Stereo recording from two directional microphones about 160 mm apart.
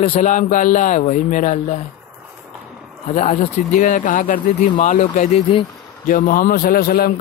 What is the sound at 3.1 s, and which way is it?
Speech, 45° left (ahead or behind).